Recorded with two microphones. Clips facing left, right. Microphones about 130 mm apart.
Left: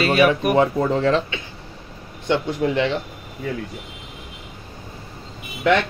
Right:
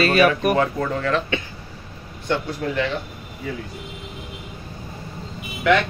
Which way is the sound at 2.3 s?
25° left (ahead or behind).